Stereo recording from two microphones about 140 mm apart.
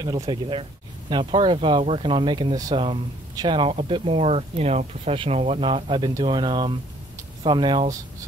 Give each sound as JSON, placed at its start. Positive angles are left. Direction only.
{"t": 0.2, "sound": "speech", "side_deg": -35}